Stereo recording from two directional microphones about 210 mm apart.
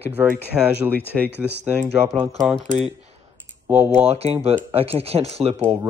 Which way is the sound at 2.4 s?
5° left (ahead or behind).